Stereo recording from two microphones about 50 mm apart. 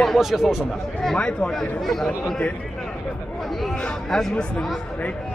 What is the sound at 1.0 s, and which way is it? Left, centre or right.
Speech, centre.